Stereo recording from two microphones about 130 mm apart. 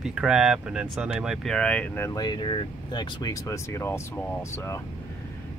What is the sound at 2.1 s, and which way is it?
Speech, 35° left (ahead or behind).